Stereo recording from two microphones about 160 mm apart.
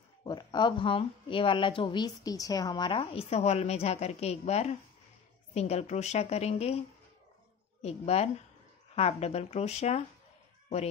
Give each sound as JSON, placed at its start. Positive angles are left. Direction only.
{"t": 0.2, "sound": "speech", "side_deg": 25}
{"t": 7.8, "sound": "speech", "side_deg": 40}